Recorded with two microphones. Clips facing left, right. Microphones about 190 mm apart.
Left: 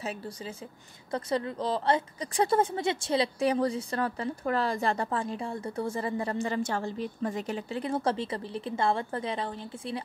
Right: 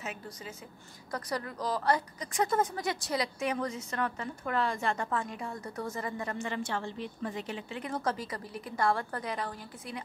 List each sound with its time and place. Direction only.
0.0 s a woman's voice: 30° left (ahead or behind)